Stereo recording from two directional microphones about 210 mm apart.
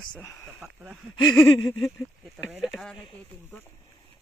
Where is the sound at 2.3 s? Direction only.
Centre (ahead or behind).